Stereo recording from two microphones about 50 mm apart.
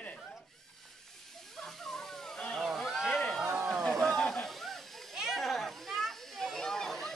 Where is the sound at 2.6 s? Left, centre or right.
Centre.